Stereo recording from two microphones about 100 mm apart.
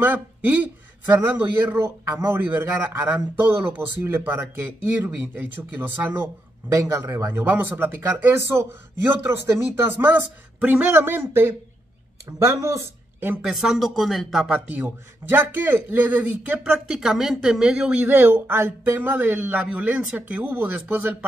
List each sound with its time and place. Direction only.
0.0 s speech: 20° right (ahead or behind)
13.4 s speech: 5° right (ahead or behind)
14.7 s a man's voice: 20° right (ahead or behind)